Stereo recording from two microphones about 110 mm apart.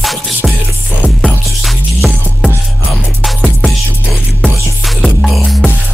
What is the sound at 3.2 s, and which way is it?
Music, centre (ahead or behind).